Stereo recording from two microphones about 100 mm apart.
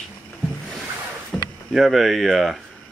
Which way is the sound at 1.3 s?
Centre (ahead or behind).